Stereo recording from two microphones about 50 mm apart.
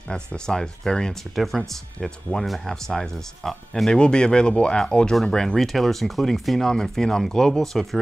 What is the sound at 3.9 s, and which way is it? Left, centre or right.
Speech, centre.